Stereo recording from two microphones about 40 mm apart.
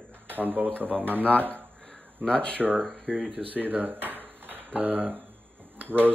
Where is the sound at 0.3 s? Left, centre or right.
Right.